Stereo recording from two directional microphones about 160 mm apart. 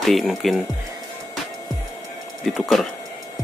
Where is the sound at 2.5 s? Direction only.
5° left (ahead or behind).